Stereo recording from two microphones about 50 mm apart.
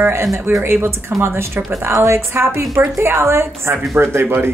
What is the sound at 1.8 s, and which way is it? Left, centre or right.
A woman's voice, right.